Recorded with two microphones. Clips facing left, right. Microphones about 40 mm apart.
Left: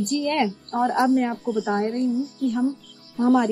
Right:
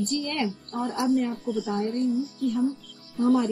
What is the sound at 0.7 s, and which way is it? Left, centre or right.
Speech, left.